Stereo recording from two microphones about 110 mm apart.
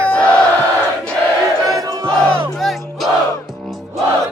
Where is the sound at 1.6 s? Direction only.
30° right (ahead or behind).